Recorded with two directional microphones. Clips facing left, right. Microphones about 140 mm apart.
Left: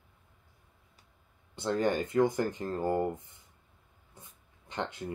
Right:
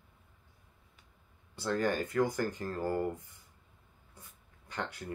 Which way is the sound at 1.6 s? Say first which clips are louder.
Left 2 dB; 20° left (ahead or behind).